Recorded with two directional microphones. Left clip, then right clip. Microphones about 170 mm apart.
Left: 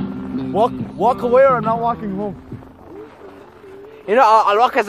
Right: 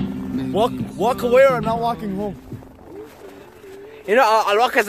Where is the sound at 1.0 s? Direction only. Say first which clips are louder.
Left 2 dB; 15° right (ahead or behind).